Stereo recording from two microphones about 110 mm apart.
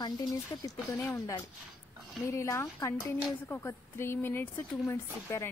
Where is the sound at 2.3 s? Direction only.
25° left (ahead or behind).